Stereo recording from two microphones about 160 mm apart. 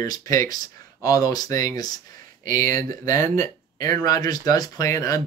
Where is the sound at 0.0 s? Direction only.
20° left (ahead or behind).